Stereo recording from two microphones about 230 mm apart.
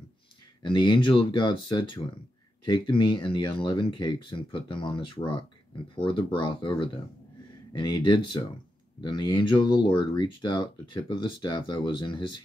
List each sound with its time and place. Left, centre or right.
0.6 s speech: centre